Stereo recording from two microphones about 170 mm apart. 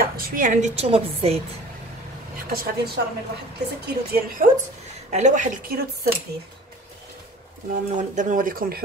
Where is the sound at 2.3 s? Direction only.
60° right (ahead or behind).